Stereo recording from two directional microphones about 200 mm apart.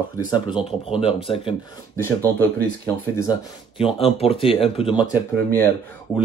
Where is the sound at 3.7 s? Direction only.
30° left (ahead or behind).